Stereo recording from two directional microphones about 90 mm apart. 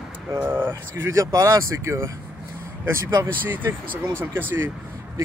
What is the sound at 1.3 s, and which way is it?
Speech, 35° right (ahead or behind).